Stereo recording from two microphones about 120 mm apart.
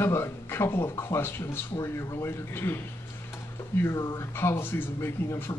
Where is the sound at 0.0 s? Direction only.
20° left (ahead or behind).